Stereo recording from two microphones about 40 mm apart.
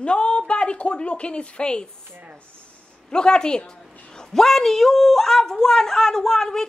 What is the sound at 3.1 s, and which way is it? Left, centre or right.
A woman's voice, left.